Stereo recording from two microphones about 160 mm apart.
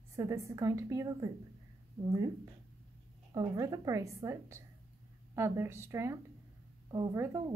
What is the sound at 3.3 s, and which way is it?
A woman's voice, 20° right (ahead or behind).